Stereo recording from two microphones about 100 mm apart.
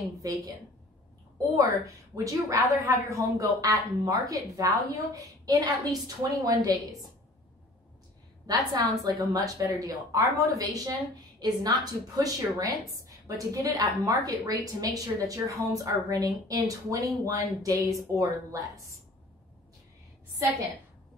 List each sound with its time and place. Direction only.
0.2 s a woman's voice: 35° right (ahead or behind)
2.2 s a woman's voice: 35° right (ahead or behind)
8.5 s a woman's voice: 40° right (ahead or behind)